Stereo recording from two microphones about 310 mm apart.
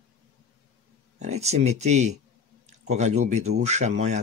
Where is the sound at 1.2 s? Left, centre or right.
Right.